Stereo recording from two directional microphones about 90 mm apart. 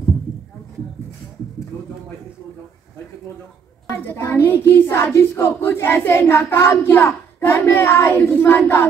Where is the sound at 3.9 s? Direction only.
25° left (ahead or behind).